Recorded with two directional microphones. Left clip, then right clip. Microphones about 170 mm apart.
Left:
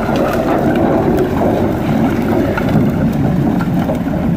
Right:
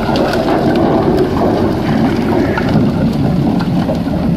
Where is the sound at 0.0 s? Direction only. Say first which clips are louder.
Right 1 dB; 10° left (ahead or behind).